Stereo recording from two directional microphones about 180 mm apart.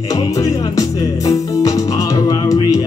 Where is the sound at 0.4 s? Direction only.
20° left (ahead or behind).